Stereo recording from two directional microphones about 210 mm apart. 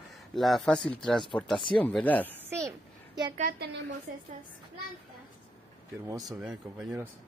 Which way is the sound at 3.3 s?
45° right (ahead or behind).